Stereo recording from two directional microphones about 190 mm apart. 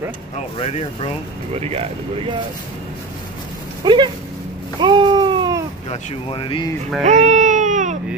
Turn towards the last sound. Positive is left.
turn(degrees=-40)  # may be behind; listen again after turning